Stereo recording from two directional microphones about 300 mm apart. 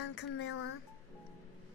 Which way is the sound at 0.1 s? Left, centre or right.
Left.